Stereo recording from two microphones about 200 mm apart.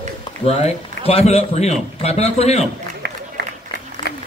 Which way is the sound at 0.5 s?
30° left (ahead or behind).